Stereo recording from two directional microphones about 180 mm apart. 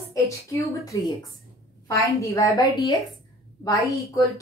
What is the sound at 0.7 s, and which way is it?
A woman's voice, 20° left (ahead or behind).